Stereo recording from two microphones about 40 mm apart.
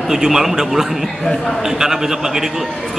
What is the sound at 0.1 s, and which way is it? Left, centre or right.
Speech, centre.